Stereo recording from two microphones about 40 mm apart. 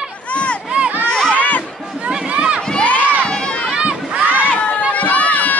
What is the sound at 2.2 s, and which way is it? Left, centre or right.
Run, right.